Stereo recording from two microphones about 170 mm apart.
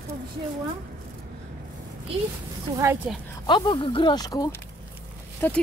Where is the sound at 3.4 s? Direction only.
25° left (ahead or behind).